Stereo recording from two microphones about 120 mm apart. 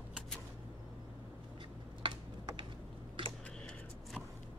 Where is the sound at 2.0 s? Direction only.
45° right (ahead or behind).